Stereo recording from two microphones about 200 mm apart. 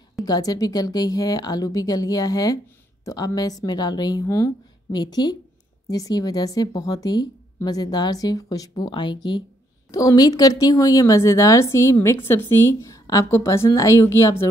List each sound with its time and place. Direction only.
0.2 s speech: 20° left (ahead or behind)